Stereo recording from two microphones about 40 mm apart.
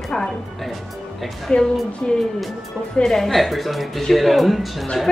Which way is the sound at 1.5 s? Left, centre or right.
Left.